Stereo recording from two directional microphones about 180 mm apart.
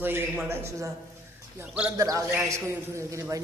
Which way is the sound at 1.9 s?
20° right (ahead or behind).